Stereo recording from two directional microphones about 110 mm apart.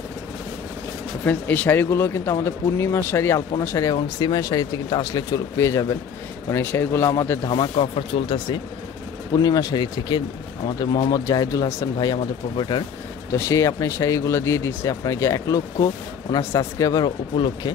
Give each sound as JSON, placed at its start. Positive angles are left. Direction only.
{"t": 1.2, "sound": "speech", "side_deg": 15}
{"t": 7.4, "sound": "speech", "side_deg": 45}
{"t": 9.4, "sound": "speech", "side_deg": 35}
{"t": 13.3, "sound": "speech", "side_deg": 25}